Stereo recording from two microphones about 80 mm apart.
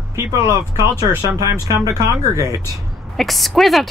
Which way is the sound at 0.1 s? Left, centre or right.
Right.